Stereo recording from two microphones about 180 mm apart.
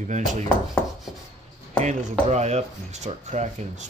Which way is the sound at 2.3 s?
40° right (ahead or behind).